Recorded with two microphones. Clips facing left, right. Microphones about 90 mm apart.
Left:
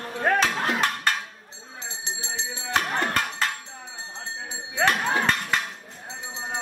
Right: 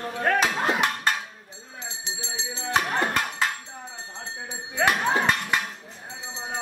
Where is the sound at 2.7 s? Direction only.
10° right (ahead or behind).